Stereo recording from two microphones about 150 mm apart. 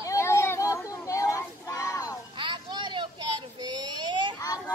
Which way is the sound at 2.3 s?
30° right (ahead or behind).